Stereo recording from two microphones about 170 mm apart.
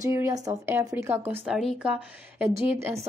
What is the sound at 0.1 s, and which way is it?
A woman's voice, 15° right (ahead or behind).